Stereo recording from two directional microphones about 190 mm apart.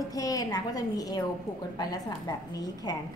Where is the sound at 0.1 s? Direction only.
20° left (ahead or behind).